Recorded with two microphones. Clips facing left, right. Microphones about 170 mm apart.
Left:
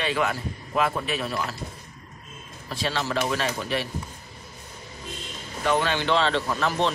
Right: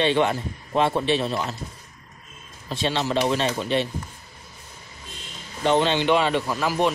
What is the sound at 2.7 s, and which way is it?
Speech, 20° right (ahead or behind).